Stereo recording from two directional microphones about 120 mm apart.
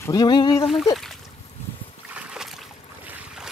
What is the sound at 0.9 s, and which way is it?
Splash, centre (ahead or behind).